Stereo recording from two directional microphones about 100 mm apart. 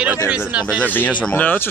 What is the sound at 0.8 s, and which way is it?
Speech, 15° left (ahead or behind).